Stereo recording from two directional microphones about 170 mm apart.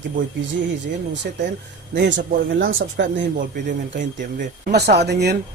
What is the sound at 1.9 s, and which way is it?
Speech, 90° right.